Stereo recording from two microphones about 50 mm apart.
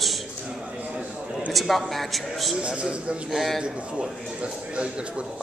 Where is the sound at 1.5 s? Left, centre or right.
Centre.